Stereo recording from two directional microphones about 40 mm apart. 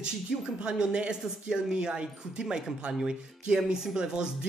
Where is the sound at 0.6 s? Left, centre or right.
Centre.